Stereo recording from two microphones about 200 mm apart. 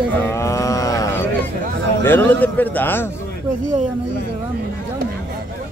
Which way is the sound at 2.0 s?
10° left (ahead or behind).